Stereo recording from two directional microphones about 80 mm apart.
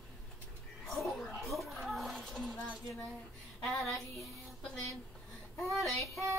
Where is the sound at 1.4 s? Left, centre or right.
Centre.